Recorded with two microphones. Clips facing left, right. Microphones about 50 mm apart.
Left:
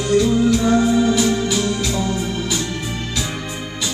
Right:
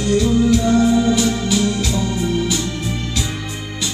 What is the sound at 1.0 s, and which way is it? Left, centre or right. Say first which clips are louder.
Organ: even; centre.